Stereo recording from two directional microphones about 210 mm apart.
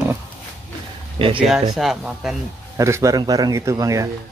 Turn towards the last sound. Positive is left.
turn(degrees=-15)  # may be behind; listen again after turning